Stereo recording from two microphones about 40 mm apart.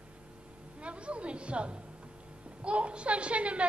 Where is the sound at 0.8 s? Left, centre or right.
Right.